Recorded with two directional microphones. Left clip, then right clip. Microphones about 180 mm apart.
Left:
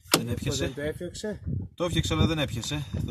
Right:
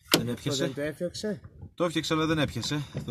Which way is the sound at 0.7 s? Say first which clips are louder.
Right 1 dB; 45° right (ahead or behind).